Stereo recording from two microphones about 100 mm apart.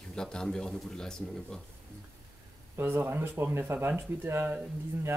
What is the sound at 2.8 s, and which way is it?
Speech, 25° right (ahead or behind).